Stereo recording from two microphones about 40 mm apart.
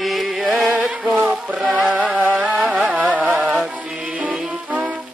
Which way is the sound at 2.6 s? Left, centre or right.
Right.